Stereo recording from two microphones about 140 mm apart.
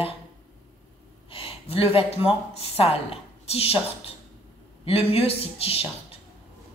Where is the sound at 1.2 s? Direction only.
40° left (ahead or behind).